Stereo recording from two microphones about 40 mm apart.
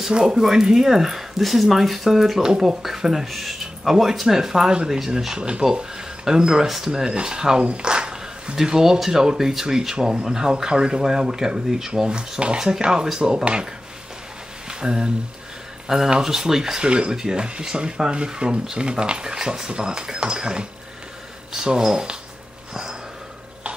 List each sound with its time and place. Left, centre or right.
0.1 s speech: right
7.6 s a sound: right
8.6 s speech: centre
14.7 s speech: right